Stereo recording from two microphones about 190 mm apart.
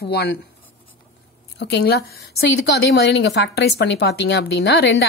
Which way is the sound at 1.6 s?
55° left (ahead or behind).